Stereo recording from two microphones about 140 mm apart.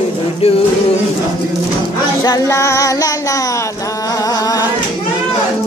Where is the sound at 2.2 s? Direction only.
25° left (ahead or behind).